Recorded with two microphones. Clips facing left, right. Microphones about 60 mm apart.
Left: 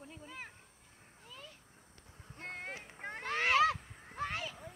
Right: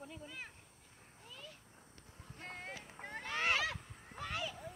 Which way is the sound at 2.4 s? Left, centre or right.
Left.